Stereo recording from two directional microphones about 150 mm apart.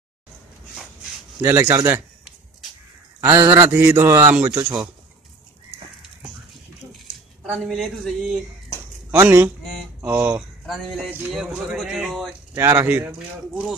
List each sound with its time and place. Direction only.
1.4 s speech: 15° right (ahead or behind)
3.3 s speech: 15° right (ahead or behind)
7.5 s speech: centre (ahead or behind)
9.1 s speech: 15° right (ahead or behind)
10.6 s speech: centre (ahead or behind)
12.5 s speech: 15° right (ahead or behind)